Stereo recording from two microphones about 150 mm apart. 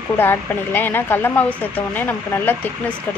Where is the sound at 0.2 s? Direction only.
15° left (ahead or behind).